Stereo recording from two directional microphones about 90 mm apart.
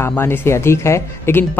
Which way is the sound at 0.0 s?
25° left (ahead or behind).